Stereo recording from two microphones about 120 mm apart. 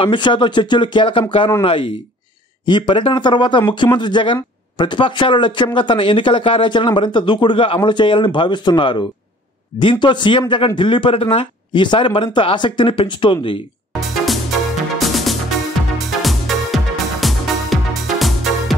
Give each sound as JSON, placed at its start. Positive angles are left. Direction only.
{"t": 0.0, "sound": "speech", "side_deg": 45}
{"t": 13.9, "sound": "music", "side_deg": 0}